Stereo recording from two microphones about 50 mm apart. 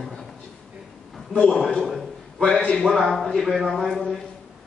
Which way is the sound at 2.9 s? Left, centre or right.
Centre.